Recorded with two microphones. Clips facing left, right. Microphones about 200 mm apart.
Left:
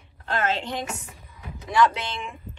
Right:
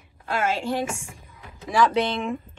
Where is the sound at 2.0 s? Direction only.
Centre (ahead or behind).